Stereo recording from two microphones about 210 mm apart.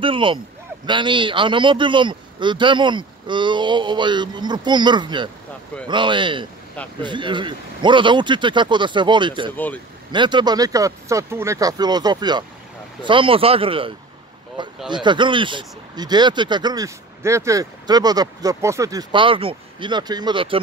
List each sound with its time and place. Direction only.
0.0 s speech: 25° right (ahead or behind)